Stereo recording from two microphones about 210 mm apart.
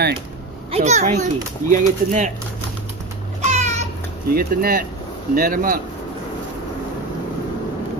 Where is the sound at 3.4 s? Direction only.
30° right (ahead or behind).